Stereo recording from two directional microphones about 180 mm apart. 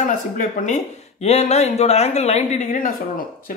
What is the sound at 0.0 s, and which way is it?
Speech, 45° left (ahead or behind).